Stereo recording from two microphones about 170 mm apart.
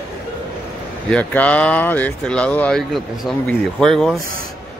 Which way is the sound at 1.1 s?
10° left (ahead or behind).